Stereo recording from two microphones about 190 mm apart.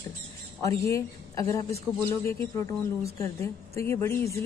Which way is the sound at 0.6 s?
15° left (ahead or behind).